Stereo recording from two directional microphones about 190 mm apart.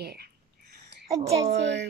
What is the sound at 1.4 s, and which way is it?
Speech, 65° right (ahead or behind).